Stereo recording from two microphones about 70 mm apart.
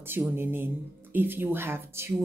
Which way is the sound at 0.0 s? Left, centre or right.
Right.